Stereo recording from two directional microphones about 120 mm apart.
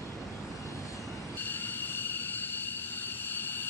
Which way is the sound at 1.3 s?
15° left (ahead or behind).